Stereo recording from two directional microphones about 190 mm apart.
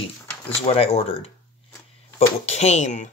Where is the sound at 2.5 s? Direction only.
35° left (ahead or behind).